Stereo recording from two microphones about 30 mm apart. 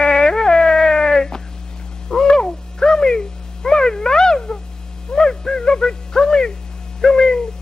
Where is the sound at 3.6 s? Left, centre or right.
Left.